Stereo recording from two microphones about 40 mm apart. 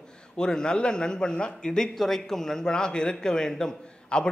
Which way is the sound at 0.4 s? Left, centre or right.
Left.